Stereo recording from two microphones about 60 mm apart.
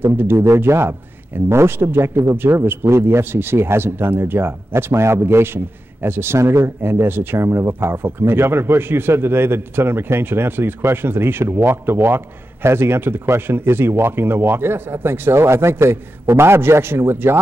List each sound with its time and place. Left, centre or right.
0.0 s speech: right